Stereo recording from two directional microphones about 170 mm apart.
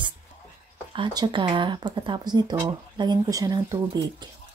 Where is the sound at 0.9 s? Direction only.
25° right (ahead or behind).